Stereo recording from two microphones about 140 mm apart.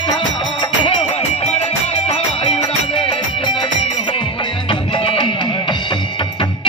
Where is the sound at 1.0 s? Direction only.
50° left (ahead or behind).